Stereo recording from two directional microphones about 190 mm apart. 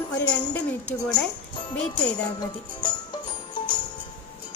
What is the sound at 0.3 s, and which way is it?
Speech, 5° left (ahead or behind).